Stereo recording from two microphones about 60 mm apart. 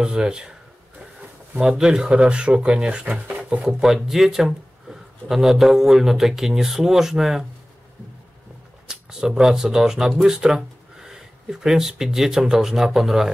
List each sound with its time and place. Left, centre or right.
0.0 s a sound: centre
1.6 s speech: centre
8.8 s speech: centre